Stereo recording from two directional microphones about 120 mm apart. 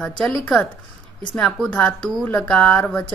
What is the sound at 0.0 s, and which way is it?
A woman's voice, 5° left (ahead or behind).